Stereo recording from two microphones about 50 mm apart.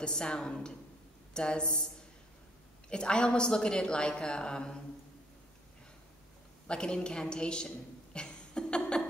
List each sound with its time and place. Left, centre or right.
0.0 s a woman's voice: centre
2.9 s a woman's voice: centre
6.7 s a woman's voice: centre